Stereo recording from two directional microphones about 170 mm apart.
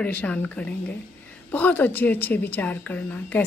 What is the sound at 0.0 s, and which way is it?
A woman's voice, 10° left (ahead or behind).